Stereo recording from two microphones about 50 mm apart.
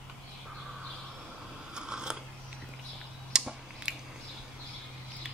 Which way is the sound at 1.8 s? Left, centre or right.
Centre.